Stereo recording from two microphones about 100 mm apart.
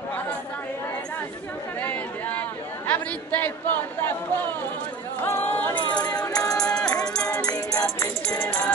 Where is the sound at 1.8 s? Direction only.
15° left (ahead or behind).